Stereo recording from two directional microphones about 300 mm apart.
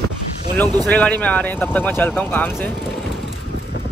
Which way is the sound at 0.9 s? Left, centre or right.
Centre.